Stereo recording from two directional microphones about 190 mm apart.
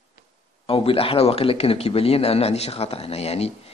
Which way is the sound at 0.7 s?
30° left (ahead or behind).